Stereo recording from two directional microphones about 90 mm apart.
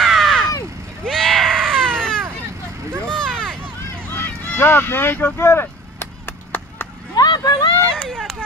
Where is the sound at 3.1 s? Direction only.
5° left (ahead or behind).